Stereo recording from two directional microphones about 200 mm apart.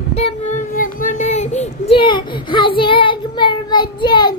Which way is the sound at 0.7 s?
40° left (ahead or behind).